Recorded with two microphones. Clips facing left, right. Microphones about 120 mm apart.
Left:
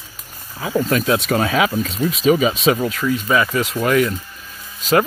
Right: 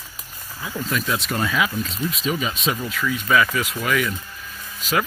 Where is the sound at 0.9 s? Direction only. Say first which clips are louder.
Left 5 dB; 60° left (ahead or behind).